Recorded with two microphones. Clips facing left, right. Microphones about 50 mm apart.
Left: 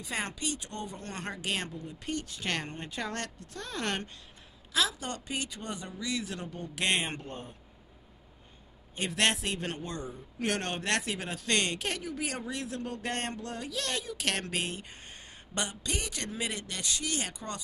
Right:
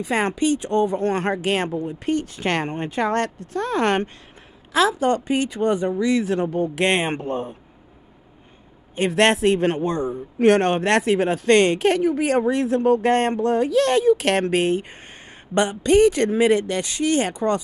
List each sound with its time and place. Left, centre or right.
0.0 s a man's voice: right
8.9 s a man's voice: right